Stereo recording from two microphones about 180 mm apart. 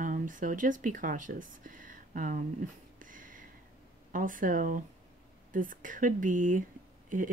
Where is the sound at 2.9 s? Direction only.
50° right (ahead or behind).